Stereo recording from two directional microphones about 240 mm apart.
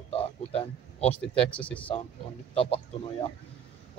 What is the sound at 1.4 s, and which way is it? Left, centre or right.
Speech, centre.